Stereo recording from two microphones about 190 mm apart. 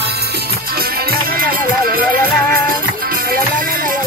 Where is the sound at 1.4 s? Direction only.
50° right (ahead or behind).